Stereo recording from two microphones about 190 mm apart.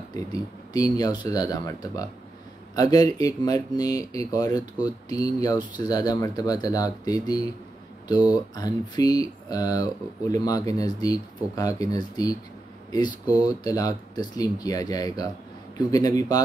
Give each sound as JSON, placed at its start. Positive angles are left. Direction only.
{"t": 0.1, "sound": "speech", "side_deg": 20}